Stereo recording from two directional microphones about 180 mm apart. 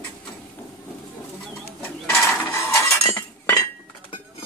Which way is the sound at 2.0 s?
15° left (ahead or behind).